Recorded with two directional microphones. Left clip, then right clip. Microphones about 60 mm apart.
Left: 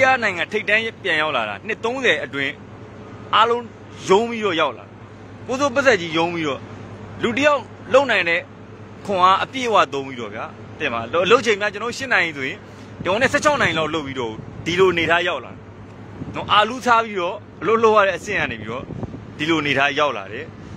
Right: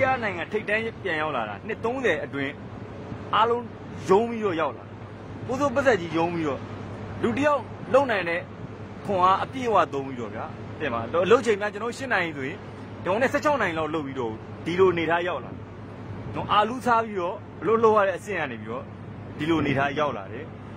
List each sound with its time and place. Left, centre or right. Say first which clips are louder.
0.5 s a man's voice: left 7 dB; left
5.5 s a man's voice: left 5 dB; left
10.3 s a man's voice: left 4 dB; left
12.1 s a man's voice: left 7 dB; left
13.3 s speech: left 6 dB; left
14.8 s speech: left 5 dB; left
16.3 s a man's voice: left 5 dB; left
19.7 s a man's voice: left 7 dB; left